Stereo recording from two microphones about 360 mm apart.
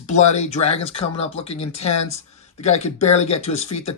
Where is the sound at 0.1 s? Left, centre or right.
Centre.